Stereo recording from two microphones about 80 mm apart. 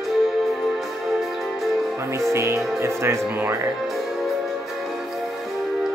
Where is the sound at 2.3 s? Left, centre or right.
Right.